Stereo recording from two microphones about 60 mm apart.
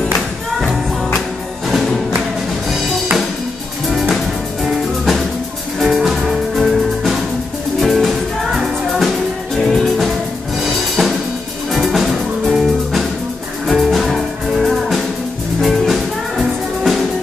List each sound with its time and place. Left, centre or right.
5.8 s music: centre